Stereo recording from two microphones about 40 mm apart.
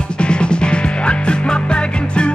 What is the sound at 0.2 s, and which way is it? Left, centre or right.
Music, left.